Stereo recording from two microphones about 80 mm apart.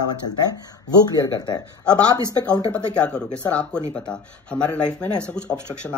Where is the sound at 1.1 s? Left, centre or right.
Left.